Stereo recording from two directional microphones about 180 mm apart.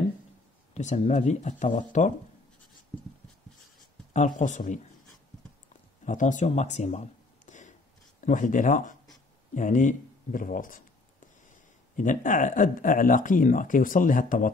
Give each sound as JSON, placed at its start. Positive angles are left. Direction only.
{"t": 0.7, "sound": "speech", "side_deg": 40}
{"t": 4.1, "sound": "speech", "side_deg": 45}
{"t": 6.0, "sound": "speech", "side_deg": 45}